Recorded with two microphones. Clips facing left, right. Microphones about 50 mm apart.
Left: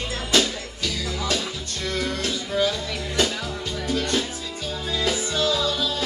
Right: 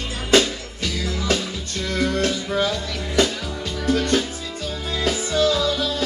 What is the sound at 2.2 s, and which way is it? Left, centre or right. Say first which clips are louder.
Music: right 3 dB; right.